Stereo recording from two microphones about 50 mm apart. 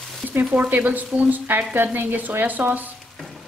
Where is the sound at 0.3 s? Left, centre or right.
Right.